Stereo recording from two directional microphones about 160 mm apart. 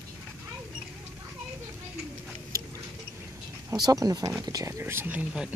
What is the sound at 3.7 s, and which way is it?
Speech, 25° right (ahead or behind).